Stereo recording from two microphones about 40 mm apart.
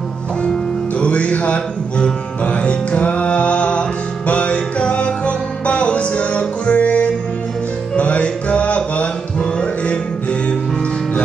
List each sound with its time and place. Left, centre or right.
1.0 s music: left